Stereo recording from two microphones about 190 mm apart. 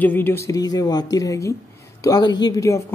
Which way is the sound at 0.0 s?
10° left (ahead or behind).